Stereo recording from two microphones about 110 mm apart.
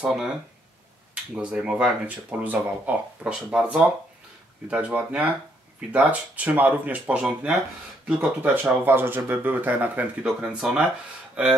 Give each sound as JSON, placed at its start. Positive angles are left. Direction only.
{"t": 0.0, "sound": "speech", "side_deg": -5}
{"t": 1.3, "sound": "speech", "side_deg": -10}